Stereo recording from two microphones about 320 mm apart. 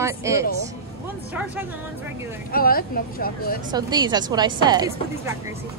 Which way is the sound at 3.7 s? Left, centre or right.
Centre.